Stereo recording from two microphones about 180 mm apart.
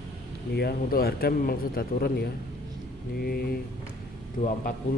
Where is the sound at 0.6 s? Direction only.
60° left (ahead or behind).